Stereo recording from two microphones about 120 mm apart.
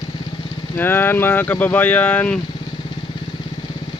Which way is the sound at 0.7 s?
20° left (ahead or behind).